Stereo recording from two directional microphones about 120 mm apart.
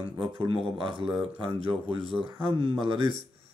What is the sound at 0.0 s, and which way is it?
Speech, 45° right (ahead or behind).